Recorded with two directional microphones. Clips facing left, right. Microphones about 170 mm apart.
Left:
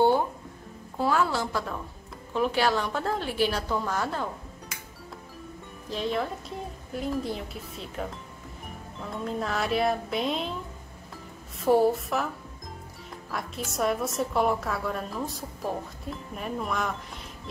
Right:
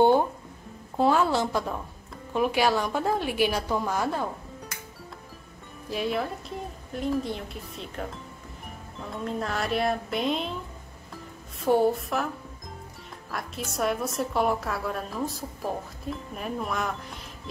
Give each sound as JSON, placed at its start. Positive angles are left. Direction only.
{"t": 0.9, "sound": "a woman's voice", "side_deg": -25}
{"t": 5.9, "sound": "a woman's voice", "side_deg": -10}
{"t": 9.1, "sound": "a woman's voice", "side_deg": 0}
{"t": 11.6, "sound": "a woman's voice", "side_deg": 0}
{"t": 13.3, "sound": "a woman's voice", "side_deg": 0}